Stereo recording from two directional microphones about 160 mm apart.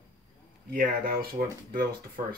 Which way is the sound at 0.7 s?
65° right (ahead or behind).